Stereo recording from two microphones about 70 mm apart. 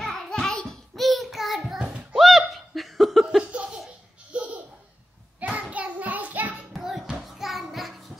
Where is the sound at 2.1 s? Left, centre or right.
Centre.